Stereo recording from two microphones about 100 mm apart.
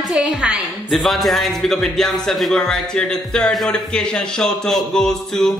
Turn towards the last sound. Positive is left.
turn(degrees=5)  # may be behind; listen again after turning